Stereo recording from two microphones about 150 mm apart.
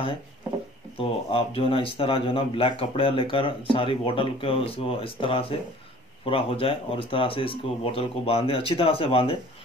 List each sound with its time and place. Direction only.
0.9 s speech: 40° left (ahead or behind)